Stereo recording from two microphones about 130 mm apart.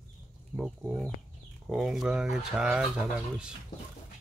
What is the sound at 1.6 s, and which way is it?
Speech, centre (ahead or behind).